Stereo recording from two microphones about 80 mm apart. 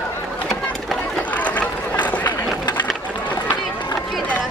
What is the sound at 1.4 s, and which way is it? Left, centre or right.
Run, centre.